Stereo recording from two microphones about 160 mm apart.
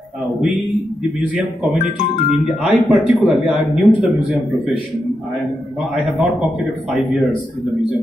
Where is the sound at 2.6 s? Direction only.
5° right (ahead or behind).